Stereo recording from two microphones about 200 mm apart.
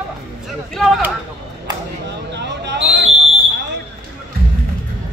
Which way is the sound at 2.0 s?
60° right (ahead or behind).